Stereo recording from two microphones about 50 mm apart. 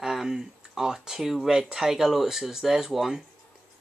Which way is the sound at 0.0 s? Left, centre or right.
Centre.